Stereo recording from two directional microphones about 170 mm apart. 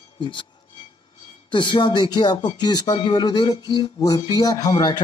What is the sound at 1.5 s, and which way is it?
Speech, 25° left (ahead or behind).